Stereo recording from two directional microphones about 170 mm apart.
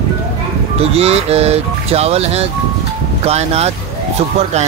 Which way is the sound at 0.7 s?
35° right (ahead or behind).